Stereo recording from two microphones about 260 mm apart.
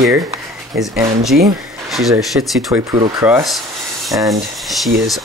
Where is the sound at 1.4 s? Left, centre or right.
Centre.